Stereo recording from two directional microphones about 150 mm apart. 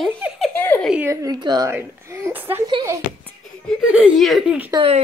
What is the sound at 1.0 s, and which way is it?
Speech, 20° right (ahead or behind).